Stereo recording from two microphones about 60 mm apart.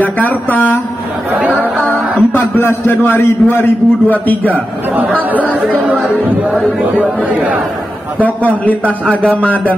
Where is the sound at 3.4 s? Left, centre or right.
Left.